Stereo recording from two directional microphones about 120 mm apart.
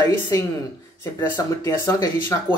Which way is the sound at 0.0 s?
25° left (ahead or behind).